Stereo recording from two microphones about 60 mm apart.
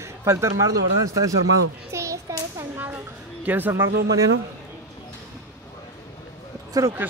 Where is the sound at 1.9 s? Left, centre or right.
Right.